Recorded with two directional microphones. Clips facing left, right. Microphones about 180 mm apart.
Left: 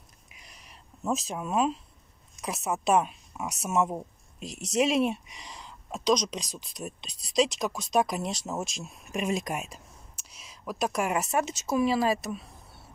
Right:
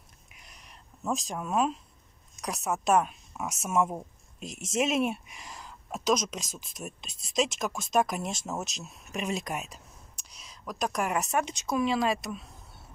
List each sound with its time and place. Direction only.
0.3 s a sound: centre (ahead or behind)
2.4 s speech: centre (ahead or behind)
4.4 s speech: 45° right (ahead or behind)
4.6 s speech: centre (ahead or behind)
9.3 s speech: 10° left (ahead or behind)